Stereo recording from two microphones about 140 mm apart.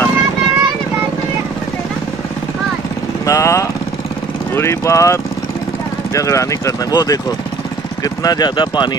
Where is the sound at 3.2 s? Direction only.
20° left (ahead or behind).